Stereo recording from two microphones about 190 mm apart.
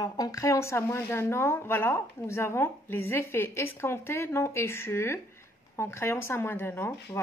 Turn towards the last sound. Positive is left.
turn(degrees=15)  # may be behind; listen again after turning